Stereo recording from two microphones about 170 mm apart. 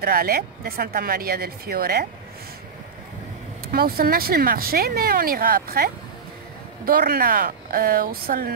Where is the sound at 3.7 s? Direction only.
60° right (ahead or behind).